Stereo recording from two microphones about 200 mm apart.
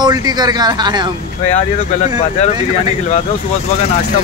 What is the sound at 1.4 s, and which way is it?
Speech, 35° left (ahead or behind).